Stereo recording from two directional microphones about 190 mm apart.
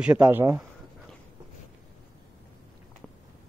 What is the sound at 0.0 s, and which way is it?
Speech, 5° right (ahead or behind).